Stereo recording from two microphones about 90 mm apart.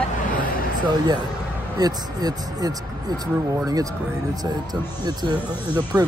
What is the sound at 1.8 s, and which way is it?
Speech, 45° right (ahead or behind).